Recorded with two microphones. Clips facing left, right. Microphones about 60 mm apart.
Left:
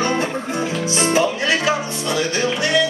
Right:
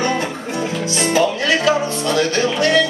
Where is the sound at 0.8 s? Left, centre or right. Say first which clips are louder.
Right 1 dB; centre.